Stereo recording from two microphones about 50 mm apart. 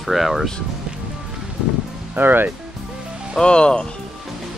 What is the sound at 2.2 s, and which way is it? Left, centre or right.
Speech, right.